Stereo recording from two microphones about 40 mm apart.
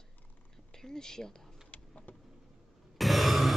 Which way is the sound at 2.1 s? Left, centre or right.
Left.